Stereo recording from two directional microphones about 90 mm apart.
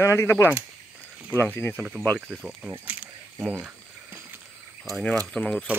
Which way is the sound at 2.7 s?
20° right (ahead or behind).